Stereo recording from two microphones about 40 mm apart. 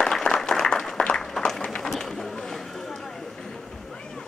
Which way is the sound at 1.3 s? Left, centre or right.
Centre.